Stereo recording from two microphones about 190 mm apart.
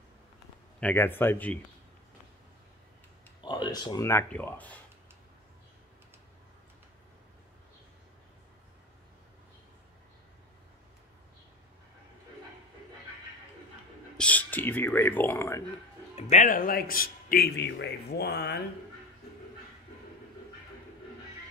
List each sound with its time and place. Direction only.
0.7 s speech: 10° left (ahead or behind)
3.3 s speech: 25° left (ahead or behind); by 4.7 s 10° left (ahead or behind)
14.1 s speech: 5° left (ahead or behind)
16.2 s a man's voice: 35° left (ahead or behind); by 18.6 s 60° left (ahead or behind)